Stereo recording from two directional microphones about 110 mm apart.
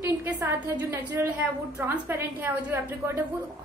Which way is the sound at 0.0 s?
25° right (ahead or behind).